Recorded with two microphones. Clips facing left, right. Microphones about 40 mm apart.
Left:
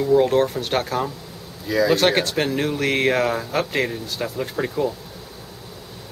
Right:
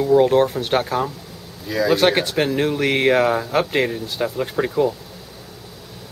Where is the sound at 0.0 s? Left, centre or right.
Centre.